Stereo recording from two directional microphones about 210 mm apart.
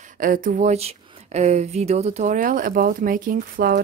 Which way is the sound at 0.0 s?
40° right (ahead or behind).